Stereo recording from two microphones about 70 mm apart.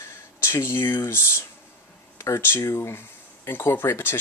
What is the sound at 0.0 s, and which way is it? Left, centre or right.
Speech, left.